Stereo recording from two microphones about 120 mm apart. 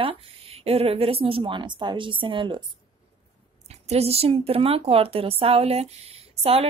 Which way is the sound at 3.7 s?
60° right (ahead or behind).